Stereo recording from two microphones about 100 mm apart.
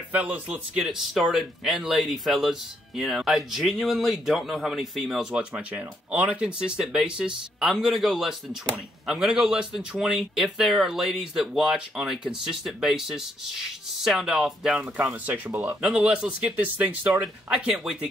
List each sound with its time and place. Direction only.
0.1 s speech: 15° right (ahead or behind)
1.1 s a man's voice: centre (ahead or behind)
15.0 s speech: 15° right (ahead or behind)
15.8 s speech: 10° right (ahead or behind)
17.2 s speech: 5° right (ahead or behind)